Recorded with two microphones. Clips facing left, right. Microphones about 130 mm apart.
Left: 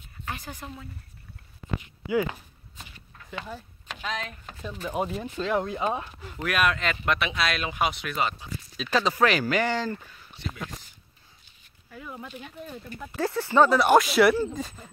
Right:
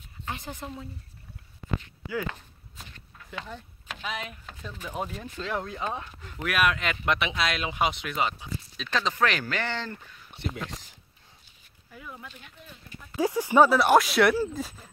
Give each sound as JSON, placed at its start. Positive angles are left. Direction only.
{"t": 0.2, "sound": "a woman's voice", "side_deg": -25}
{"t": 1.8, "sound": "a sound", "side_deg": 15}
{"t": 2.8, "sound": "a sound", "side_deg": 0}
{"t": 3.8, "sound": "speech", "side_deg": -5}
{"t": 4.5, "sound": "speech", "side_deg": 10}
{"t": 6.4, "sound": "speech", "side_deg": -5}
{"t": 8.7, "sound": "speech", "side_deg": 5}
{"t": 10.3, "sound": "speech", "side_deg": -65}
{"t": 12.4, "sound": "speech", "side_deg": 35}
{"t": 13.1, "sound": "speech", "side_deg": -15}